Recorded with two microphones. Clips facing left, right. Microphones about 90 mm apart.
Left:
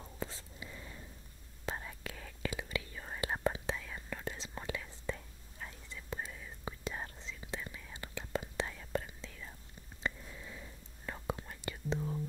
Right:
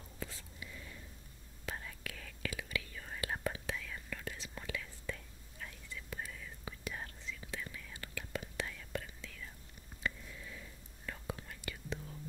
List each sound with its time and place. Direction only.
0.0 s whispering: 30° left (ahead or behind)